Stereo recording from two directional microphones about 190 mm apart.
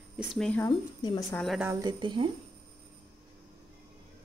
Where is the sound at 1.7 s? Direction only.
20° right (ahead or behind).